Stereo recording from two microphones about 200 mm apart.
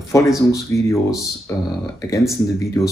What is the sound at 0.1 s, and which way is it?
Speech, 15° left (ahead or behind).